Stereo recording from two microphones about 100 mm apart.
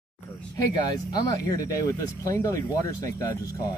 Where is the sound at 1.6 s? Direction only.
35° left (ahead or behind).